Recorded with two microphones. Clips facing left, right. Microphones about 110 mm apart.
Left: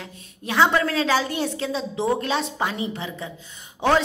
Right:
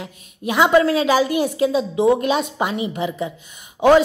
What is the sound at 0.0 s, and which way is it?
A woman's voice, 15° right (ahead or behind).